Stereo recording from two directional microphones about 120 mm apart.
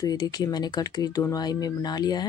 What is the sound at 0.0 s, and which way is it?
Speech, 35° left (ahead or behind).